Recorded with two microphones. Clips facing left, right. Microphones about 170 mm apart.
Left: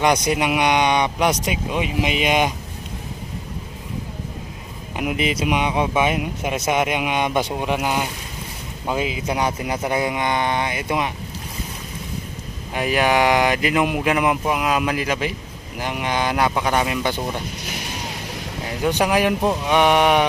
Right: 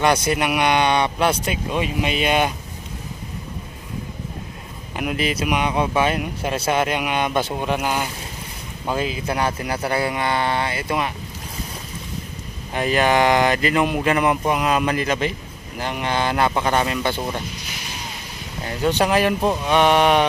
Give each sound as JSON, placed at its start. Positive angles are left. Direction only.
{"t": 0.0, "sound": "speech", "side_deg": 15}
{"t": 4.9, "sound": "speech", "side_deg": 20}
{"t": 12.7, "sound": "speech", "side_deg": 10}
{"t": 18.7, "sound": "speech", "side_deg": 10}
{"t": 19.4, "sound": "mantra", "side_deg": 0}
{"t": 19.7, "sound": "speech", "side_deg": 15}